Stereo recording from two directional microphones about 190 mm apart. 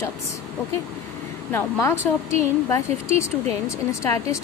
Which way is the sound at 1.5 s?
15° left (ahead or behind).